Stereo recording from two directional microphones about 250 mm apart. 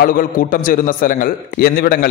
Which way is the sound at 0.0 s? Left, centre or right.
Left.